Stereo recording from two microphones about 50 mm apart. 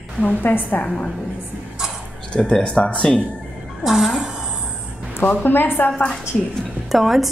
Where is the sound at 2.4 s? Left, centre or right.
Centre.